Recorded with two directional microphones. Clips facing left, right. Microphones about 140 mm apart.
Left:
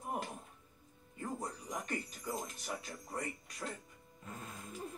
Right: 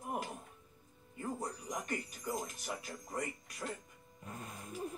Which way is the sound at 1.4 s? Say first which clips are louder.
Right 1 dB; centre (ahead or behind).